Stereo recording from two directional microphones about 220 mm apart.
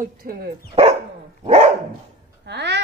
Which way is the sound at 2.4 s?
50° right (ahead or behind).